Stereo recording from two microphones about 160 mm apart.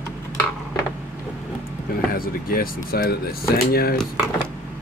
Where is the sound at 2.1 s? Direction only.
65° left (ahead or behind).